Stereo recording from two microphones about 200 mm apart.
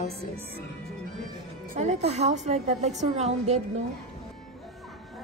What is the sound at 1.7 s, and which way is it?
A woman's voice, 35° right (ahead or behind).